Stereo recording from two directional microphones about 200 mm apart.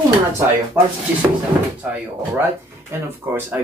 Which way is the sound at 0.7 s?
5° right (ahead or behind).